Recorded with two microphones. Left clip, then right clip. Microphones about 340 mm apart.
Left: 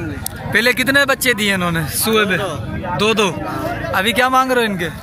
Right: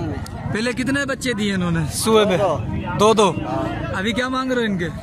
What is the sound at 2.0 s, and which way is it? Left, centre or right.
Speech, centre.